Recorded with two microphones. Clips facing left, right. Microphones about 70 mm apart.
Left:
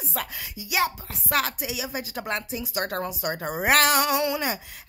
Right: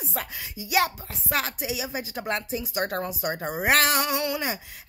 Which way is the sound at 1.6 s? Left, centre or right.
Right.